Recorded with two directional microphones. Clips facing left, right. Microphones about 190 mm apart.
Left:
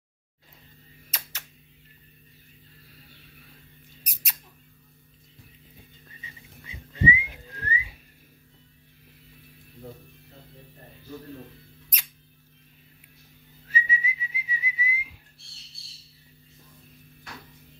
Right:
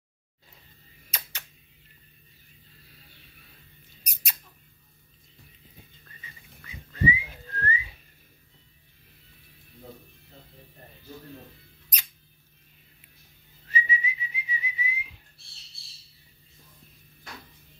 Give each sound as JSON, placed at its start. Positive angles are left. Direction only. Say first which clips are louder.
{"t": 1.1, "sound": "tick", "louder": "right 1 dB", "side_deg": 5}
{"t": 4.0, "sound": "squeak", "louder": "even", "side_deg": 0}
{"t": 6.0, "sound": "whistling", "louder": "left 3 dB", "side_deg": 20}
{"t": 13.7, "sound": "whistling", "louder": "even", "side_deg": 5}